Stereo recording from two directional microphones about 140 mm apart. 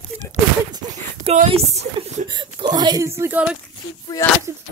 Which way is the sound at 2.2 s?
35° right (ahead or behind).